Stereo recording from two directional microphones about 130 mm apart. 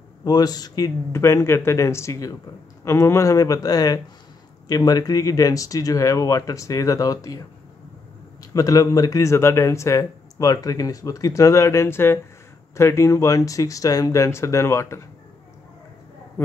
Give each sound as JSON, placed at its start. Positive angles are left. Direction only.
{"t": 0.2, "sound": "speech", "side_deg": 30}
{"t": 8.5, "sound": "speech", "side_deg": 25}
{"t": 16.4, "sound": "a man's voice", "side_deg": 15}